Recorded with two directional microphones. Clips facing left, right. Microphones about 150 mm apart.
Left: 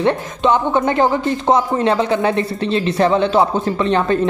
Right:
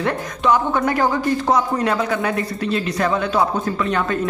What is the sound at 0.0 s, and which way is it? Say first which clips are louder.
Speech: left 4 dB; 25° left (ahead or behind).